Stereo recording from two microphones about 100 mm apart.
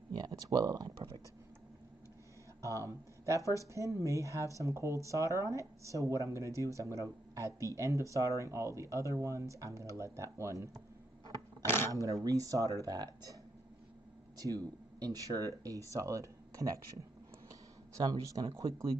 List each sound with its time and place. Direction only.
0.1 s speech: 40° right (ahead or behind)
3.3 s speech: 30° right (ahead or behind)
11.6 s a sound: 25° left (ahead or behind)
12.0 s speech: 35° right (ahead or behind)
14.4 s speech: 35° right (ahead or behind)